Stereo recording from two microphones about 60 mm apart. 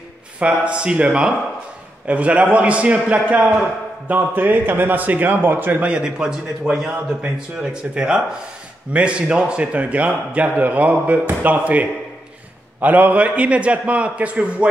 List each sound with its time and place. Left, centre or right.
0.4 s a man's voice: centre; by 5.9 s right
5.9 s speech: centre
6.9 s a man's voice: centre